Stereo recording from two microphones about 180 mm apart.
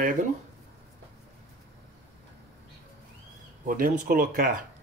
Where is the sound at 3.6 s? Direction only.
50° right (ahead or behind).